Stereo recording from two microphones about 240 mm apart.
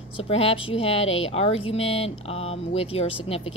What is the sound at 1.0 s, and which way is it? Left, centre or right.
Speech, left.